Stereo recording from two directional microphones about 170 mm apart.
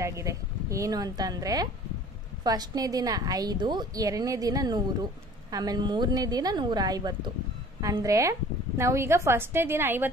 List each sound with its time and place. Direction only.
0.0 s a woman's voice: 15° right (ahead or behind)